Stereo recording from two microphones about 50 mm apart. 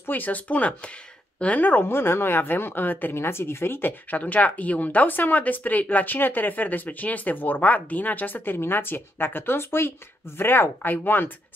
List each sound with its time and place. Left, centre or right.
0.0 s speech: left
1.9 s a woman's voice: left
3.2 s speech: left
4.1 s speech: left